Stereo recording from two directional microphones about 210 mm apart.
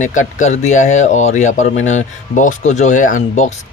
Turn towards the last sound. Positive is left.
turn(degrees=35)  # may be behind; listen again after turning